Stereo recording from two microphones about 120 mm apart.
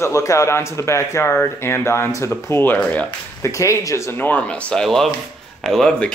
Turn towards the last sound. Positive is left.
turn(degrees=5)  # may be behind; listen again after turning